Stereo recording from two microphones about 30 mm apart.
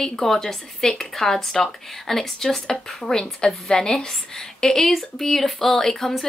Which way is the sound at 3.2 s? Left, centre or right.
Left.